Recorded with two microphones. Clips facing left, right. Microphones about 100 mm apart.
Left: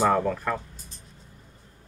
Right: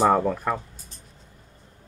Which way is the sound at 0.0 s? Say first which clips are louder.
Right 3 dB; 15° right (ahead or behind).